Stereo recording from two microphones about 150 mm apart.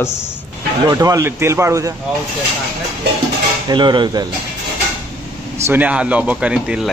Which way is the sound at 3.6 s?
30° right (ahead or behind).